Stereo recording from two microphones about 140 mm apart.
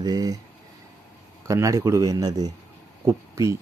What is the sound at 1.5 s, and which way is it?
Speech, 20° right (ahead or behind).